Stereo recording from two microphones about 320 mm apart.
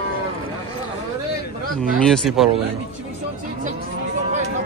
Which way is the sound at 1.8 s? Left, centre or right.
Centre.